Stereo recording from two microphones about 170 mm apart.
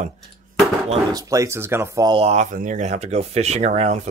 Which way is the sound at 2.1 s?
40° right (ahead or behind).